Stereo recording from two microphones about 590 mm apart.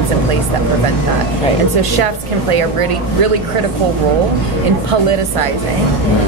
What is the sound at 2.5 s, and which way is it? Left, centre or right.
Speech, right.